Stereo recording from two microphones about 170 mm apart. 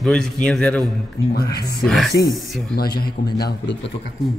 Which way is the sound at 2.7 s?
65° left (ahead or behind).